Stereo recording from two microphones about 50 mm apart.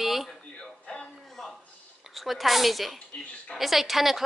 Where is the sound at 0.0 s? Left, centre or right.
Centre.